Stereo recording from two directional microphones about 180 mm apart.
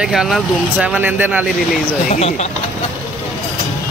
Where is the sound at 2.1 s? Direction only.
40° left (ahead or behind).